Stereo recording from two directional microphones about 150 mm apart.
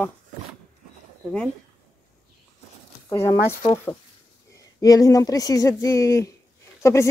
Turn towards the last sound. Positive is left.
turn(degrees=20)  # may be behind; listen again after turning